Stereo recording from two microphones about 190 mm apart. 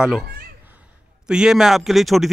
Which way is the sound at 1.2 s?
5° right (ahead or behind).